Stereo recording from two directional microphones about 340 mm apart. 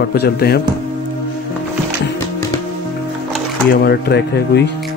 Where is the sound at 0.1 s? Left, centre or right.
Left.